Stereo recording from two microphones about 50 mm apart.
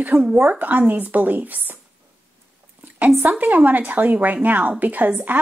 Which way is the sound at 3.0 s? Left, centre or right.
Right.